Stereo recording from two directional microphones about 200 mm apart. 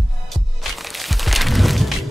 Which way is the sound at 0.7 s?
Centre (ahead or behind).